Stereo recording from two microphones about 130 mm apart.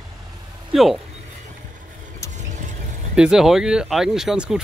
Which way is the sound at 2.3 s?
70° right (ahead or behind).